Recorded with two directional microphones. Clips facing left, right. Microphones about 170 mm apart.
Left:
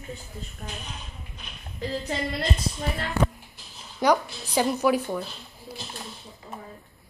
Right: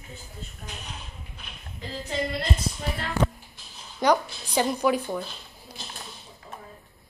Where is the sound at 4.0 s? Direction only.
5° left (ahead or behind).